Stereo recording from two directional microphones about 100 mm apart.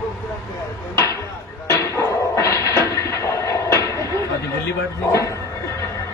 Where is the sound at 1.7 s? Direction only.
30° left (ahead or behind).